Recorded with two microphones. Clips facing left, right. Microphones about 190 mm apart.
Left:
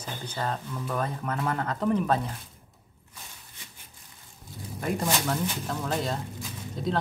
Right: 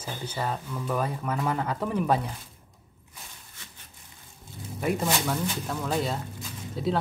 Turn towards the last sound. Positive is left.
turn(degrees=-5)  # may be behind; listen again after turning